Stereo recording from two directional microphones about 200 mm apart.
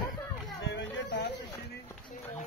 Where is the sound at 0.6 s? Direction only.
65° left (ahead or behind).